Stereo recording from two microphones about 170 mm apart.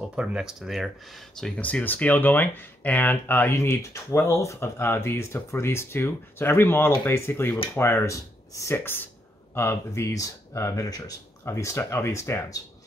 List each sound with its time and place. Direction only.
0.1 s speech: 5° right (ahead or behind); by 12.5 s 15° left (ahead or behind)